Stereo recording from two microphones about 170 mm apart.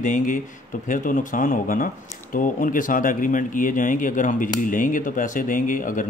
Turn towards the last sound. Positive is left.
turn(degrees=50)  # may be behind; listen again after turning